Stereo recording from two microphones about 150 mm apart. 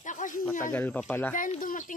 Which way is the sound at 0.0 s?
60° left (ahead or behind).